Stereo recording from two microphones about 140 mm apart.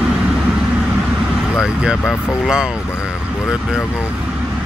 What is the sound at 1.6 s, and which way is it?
Vehicle, 5° right (ahead or behind).